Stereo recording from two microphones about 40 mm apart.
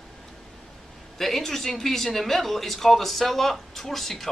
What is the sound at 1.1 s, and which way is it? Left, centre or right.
Speech, centre.